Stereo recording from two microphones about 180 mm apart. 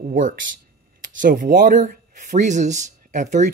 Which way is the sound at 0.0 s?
45° right (ahead or behind).